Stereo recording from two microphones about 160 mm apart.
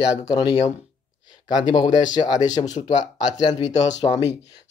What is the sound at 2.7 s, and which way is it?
Speech, 45° left (ahead or behind).